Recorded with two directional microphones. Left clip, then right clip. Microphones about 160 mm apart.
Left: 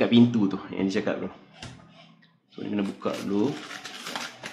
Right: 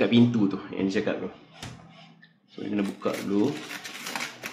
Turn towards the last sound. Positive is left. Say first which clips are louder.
# right 1 dB
turn(degrees=10)  # may be behind; listen again after turning